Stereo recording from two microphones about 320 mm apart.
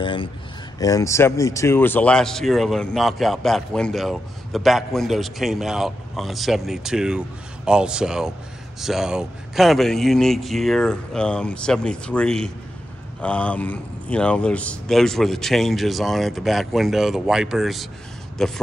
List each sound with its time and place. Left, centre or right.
0.0 s speech: centre